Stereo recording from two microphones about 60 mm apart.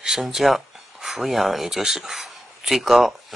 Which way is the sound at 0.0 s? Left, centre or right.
Centre.